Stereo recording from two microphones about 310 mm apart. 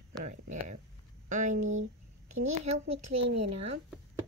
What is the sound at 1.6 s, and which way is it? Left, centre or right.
Speech, right.